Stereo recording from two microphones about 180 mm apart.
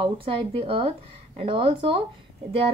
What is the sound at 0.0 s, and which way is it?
A woman's voice, 30° right (ahead or behind).